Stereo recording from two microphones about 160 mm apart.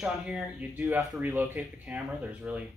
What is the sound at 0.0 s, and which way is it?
Speech, 5° right (ahead or behind).